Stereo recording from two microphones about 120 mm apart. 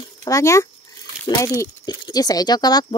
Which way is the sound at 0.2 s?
25° left (ahead or behind).